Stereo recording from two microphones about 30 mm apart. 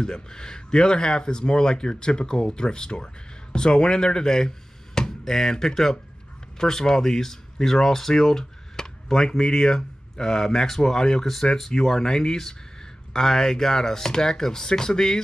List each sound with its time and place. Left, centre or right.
0.0 s speech: left